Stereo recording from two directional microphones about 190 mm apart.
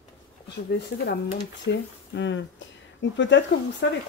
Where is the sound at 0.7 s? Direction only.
60° left (ahead or behind).